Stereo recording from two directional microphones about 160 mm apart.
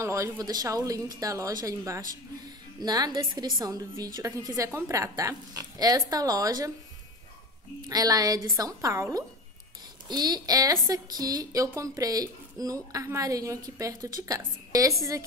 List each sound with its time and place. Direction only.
0.0 s a woman's voice: 20° right (ahead or behind)
7.9 s a woman's voice: 25° right (ahead or behind)